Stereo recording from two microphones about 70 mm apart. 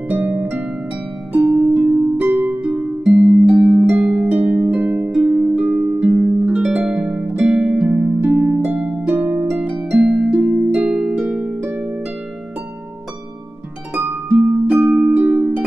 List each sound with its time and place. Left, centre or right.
0.1 s harp: right
1.7 s music: right
2.2 s harp: right
2.6 s music: centre
4.0 s harp: centre
4.3 s music: right
5.3 s harp: right
8.7 s harp: centre
10.0 s music: centre
10.9 s harp: centre
14.1 s music: right